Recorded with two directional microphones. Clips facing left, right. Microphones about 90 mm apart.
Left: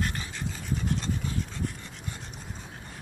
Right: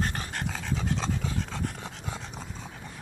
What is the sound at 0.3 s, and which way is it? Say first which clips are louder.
Pant: right 2 dB; 75° right (ahead or behind).